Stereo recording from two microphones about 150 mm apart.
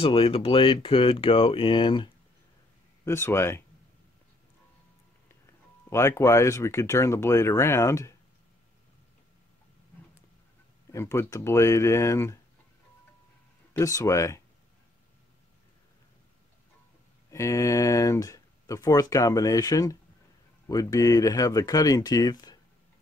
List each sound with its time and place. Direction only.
0.0 s speech: 40° left (ahead or behind)
3.1 s speech: 15° left (ahead or behind)
5.9 s speech: 20° left (ahead or behind)
10.9 s speech: 20° left (ahead or behind)
13.7 s speech: 20° left (ahead or behind)
17.3 s speech: 20° left (ahead or behind)